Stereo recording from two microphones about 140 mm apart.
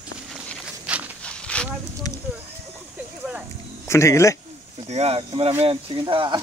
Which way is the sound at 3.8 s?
20° left (ahead or behind).